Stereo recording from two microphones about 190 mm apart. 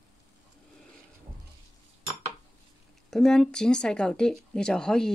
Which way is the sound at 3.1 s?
Centre (ahead or behind).